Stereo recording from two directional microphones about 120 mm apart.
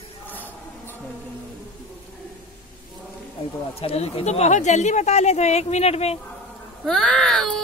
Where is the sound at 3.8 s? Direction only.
55° left (ahead or behind).